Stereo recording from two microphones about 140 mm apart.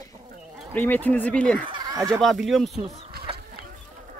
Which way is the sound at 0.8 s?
10° left (ahead or behind).